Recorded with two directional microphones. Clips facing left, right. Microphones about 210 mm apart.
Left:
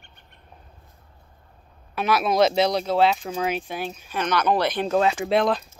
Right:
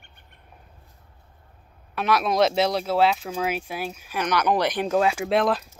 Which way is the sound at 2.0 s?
Centre (ahead or behind).